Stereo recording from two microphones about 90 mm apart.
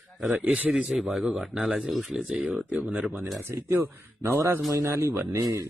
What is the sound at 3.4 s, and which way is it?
A man's voice, 25° right (ahead or behind).